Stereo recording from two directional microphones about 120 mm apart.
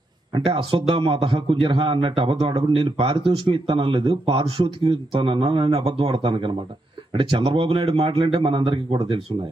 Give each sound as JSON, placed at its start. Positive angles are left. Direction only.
{"t": 0.3, "sound": "a man's voice", "side_deg": -50}